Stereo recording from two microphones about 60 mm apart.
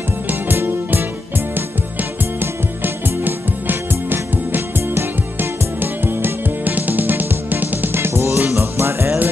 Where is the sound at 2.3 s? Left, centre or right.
Right.